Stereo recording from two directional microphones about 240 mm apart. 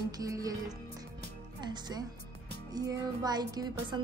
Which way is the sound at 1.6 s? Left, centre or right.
Centre.